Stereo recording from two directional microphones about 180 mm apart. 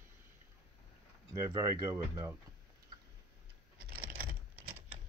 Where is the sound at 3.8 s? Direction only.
55° right (ahead or behind).